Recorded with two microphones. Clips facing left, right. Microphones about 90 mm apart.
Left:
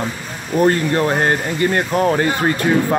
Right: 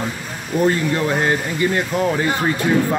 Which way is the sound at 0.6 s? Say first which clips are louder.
Left 3 dB; 55° left (ahead or behind).